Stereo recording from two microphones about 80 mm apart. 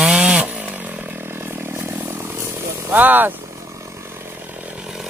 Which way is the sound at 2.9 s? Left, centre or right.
Right.